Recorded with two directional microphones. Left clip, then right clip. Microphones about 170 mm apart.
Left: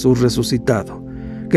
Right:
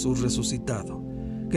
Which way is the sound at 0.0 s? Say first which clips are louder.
Left 12 dB; 45° left (ahead or behind).